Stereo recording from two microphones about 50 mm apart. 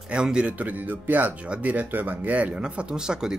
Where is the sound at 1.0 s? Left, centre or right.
Right.